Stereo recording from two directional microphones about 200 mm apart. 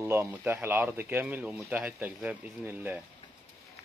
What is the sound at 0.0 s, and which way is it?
Speech, 10° right (ahead or behind).